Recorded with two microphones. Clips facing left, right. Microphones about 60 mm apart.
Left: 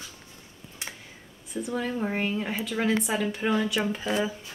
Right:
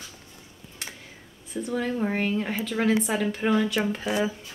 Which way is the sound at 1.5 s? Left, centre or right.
Centre.